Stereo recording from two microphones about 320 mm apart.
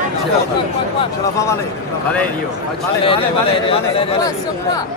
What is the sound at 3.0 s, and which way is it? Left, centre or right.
Speech, centre.